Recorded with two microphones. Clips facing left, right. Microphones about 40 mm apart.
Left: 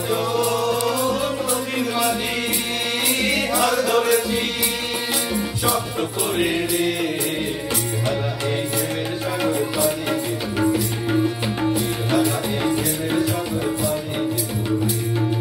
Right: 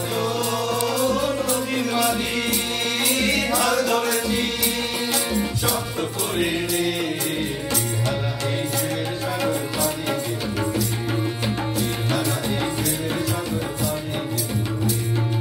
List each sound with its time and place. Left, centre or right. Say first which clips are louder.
0.4 s music: left 3 dB; centre
3.2 s music: left 2 dB; centre
6.3 s music: left 2 dB; centre
9.4 s music: left 4 dB; centre
11.7 s music: left 3 dB; centre